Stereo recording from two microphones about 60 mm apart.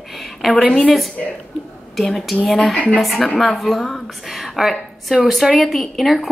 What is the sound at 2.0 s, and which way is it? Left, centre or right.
A woman's voice, centre.